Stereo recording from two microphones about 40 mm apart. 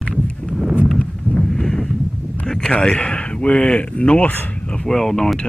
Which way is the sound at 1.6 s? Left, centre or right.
Centre.